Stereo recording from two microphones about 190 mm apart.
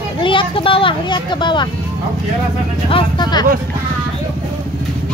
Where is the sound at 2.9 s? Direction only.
25° left (ahead or behind).